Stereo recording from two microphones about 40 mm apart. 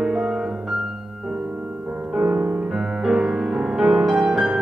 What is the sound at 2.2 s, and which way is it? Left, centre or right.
Music, right.